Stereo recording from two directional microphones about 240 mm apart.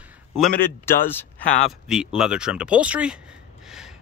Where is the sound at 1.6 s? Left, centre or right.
Centre.